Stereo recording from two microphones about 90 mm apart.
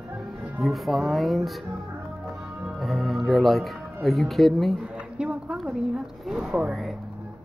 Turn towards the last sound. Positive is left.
turn(degrees=-10)  # may be behind; listen again after turning